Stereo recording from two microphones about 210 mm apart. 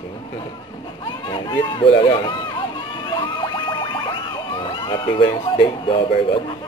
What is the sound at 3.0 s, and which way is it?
Music, 25° left (ahead or behind).